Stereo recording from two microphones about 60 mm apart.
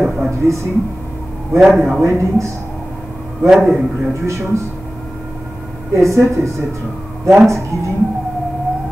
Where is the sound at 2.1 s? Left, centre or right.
Right.